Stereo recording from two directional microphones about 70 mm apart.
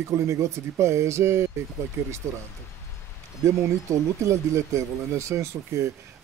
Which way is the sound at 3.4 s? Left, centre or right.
Right.